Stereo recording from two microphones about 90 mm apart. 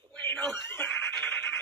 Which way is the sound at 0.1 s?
15° left (ahead or behind).